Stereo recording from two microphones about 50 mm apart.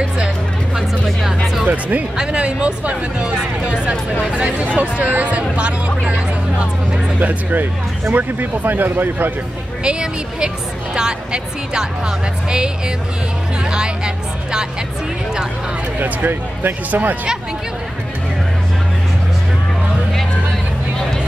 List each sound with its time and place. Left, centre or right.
1.0 s music: centre
1.7 s speech: right
7.2 s speech: right
9.8 s speech: centre
16.0 s speech: right